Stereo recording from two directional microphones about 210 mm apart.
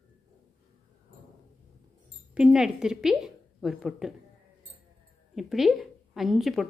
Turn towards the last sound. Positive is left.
turn(degrees=0)  # may be behind; listen again after turning